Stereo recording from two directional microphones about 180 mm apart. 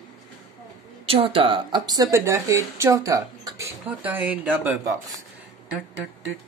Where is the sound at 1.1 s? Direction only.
30° right (ahead or behind); by 4.8 s 10° right (ahead or behind).